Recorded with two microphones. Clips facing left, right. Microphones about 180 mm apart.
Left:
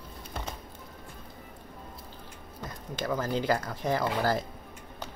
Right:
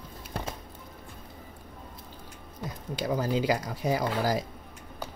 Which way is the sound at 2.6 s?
15° right (ahead or behind).